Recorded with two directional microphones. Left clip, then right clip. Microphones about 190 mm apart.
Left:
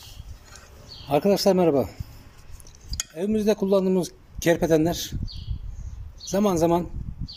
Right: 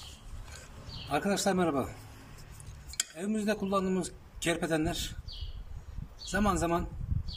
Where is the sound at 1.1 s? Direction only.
30° left (ahead or behind).